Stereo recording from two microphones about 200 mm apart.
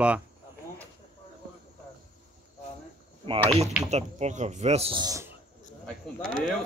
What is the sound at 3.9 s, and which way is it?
Speech, 35° right (ahead or behind).